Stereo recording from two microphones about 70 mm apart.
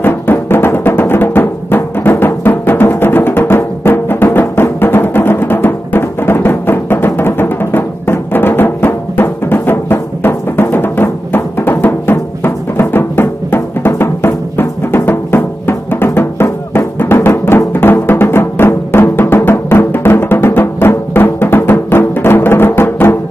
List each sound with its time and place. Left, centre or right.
0.0 s music: left